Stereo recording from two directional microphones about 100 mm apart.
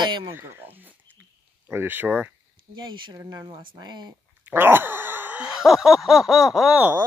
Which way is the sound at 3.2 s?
35° right (ahead or behind).